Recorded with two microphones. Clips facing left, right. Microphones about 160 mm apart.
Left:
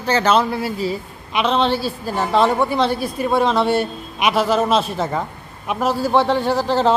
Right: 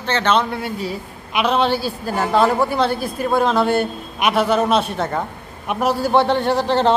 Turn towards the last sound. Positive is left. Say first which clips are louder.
# even
turn(degrees=5)  # may be behind; listen again after turning